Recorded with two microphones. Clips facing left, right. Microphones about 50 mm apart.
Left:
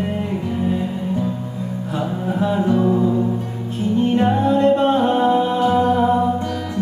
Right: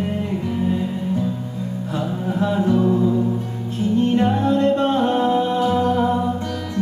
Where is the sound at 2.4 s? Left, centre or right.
Centre.